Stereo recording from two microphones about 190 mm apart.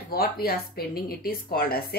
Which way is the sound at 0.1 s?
55° left (ahead or behind).